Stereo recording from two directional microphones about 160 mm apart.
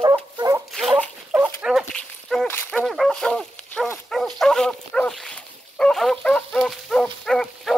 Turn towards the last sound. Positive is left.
turn(degrees=5)  # may be behind; listen again after turning